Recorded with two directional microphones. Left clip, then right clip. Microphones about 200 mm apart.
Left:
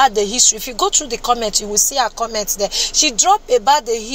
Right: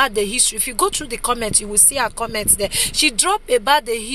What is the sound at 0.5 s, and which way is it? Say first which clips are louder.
Speech: left 3 dB; 15° right (ahead or behind).